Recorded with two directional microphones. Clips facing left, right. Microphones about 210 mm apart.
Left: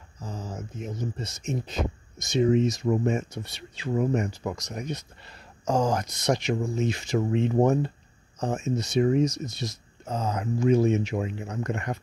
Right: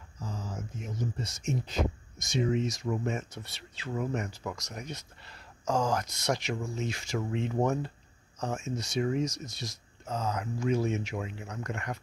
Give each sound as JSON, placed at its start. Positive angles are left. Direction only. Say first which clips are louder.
{"t": 0.5, "sound": "speech", "louder": "left 4 dB", "side_deg": 20}
{"t": 7.5, "sound": "speech", "louder": "left 6 dB", "side_deg": 35}
{"t": 8.4, "sound": "speech", "louder": "left 6 dB", "side_deg": 20}